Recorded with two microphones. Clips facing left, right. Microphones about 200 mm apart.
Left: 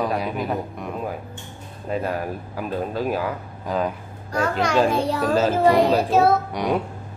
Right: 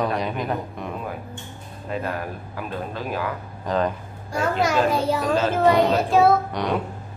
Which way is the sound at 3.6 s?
5° left (ahead or behind).